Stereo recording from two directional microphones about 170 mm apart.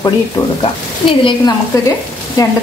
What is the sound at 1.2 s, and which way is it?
Speech, 30° left (ahead or behind).